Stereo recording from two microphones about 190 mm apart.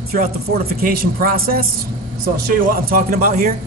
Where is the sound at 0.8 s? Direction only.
50° right (ahead or behind).